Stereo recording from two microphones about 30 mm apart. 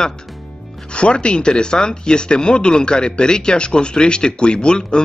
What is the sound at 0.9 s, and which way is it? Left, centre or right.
Speech, left.